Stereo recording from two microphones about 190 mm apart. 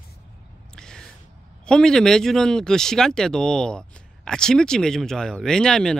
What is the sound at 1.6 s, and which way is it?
Speech, 5° left (ahead or behind).